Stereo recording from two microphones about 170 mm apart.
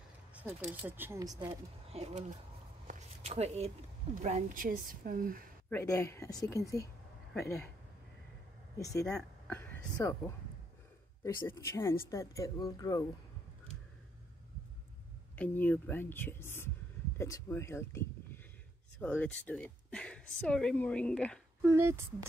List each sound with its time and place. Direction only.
0.3 s speech: 10° right (ahead or behind)
1.9 s speech: 40° right (ahead or behind)
3.3 s speech: 40° right (ahead or behind); by 5.5 s 55° right (ahead or behind)
5.7 s a woman's voice: 15° left (ahead or behind)
8.7 s speech: 20° left (ahead or behind)
9.0 s a sound: 5° left (ahead or behind)
9.9 s a woman's voice: 15° left (ahead or behind)
11.4 s a woman's voice: 15° left (ahead or behind)
15.3 s a woman's voice: 10° left (ahead or behind)
21.6 s speech: 15° right (ahead or behind)